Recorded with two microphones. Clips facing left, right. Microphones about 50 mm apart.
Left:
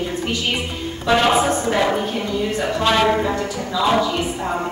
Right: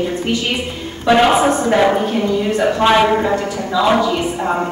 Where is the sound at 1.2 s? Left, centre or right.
Centre.